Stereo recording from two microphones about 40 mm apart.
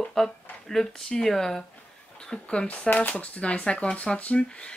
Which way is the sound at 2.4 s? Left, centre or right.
Left.